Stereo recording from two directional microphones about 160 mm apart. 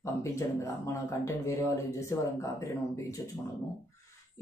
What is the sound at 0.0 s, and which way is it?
Speech, 20° left (ahead or behind).